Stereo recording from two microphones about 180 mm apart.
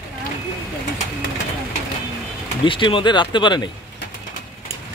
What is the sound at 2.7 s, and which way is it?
Speech, 30° left (ahead or behind).